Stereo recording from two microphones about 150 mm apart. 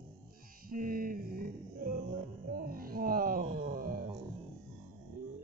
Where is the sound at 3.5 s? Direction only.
75° right (ahead or behind).